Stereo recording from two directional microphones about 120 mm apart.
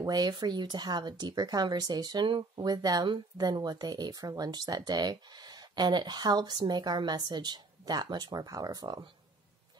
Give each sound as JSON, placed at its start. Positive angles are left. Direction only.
{"t": 0.0, "sound": "speech", "side_deg": -35}